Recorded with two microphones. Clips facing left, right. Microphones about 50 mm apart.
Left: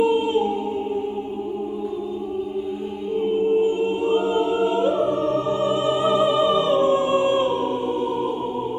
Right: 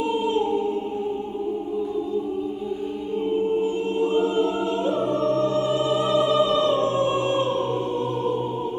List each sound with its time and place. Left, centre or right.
0.0 s choir: centre
3.6 s music: centre